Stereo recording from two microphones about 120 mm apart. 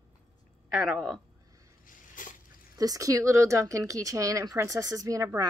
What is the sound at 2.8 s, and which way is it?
Speech, 30° right (ahead or behind).